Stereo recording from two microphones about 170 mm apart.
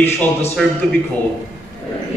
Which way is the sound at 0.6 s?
Centre (ahead or behind).